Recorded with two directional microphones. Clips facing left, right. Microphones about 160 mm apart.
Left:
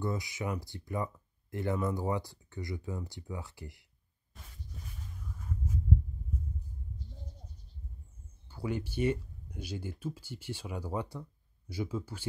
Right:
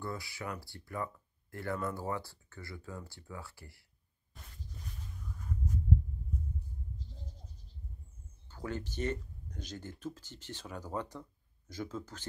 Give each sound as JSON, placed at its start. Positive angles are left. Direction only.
{"t": 0.0, "sound": "speech", "side_deg": 20}
{"t": 4.3, "sound": "a sound", "side_deg": 0}
{"t": 8.5, "sound": "speech", "side_deg": 10}